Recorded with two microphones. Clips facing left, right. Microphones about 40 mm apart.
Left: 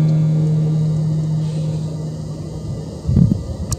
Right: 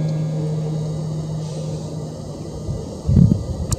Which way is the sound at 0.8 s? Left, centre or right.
Left.